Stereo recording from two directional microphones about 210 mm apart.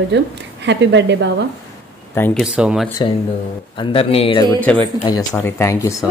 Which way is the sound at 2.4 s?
5° right (ahead or behind).